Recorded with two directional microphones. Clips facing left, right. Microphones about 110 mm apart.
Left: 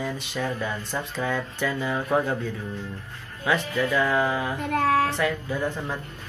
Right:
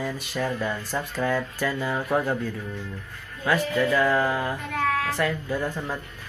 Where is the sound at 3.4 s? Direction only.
Centre (ahead or behind).